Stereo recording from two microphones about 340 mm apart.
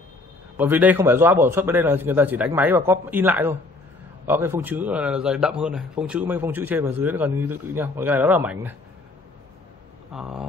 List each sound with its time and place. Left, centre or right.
0.6 s a man's voice: centre
10.1 s a man's voice: centre